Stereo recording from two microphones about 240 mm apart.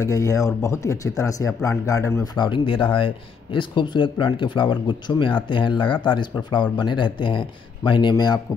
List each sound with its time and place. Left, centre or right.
0.0 s speech: centre